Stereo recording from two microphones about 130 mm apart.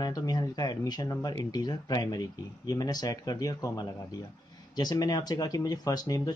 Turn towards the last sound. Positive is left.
turn(degrees=30)  # may be behind; listen again after turning